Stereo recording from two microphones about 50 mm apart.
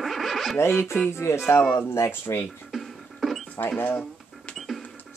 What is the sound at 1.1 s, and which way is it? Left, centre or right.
Speech, left.